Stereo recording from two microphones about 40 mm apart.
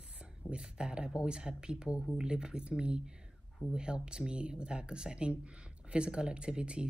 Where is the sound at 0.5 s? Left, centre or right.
Right.